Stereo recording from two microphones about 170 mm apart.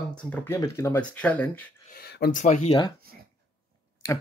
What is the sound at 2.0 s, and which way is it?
Speech, 70° left (ahead or behind).